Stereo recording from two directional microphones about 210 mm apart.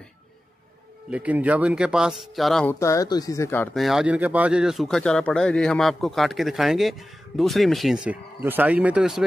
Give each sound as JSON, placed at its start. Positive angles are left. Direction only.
{"t": 1.1, "sound": "speech", "side_deg": -5}